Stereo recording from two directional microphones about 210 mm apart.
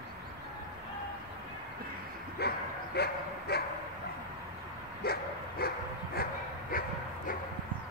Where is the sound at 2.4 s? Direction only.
50° left (ahead or behind).